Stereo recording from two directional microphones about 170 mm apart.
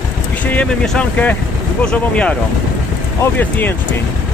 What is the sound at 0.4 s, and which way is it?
Speech, 10° left (ahead or behind).